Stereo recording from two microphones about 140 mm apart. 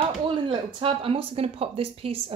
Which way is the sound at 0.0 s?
35° right (ahead or behind).